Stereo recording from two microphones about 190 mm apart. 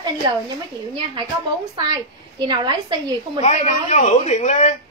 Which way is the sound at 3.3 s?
40° left (ahead or behind).